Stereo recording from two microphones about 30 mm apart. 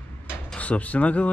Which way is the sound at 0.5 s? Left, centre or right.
Left.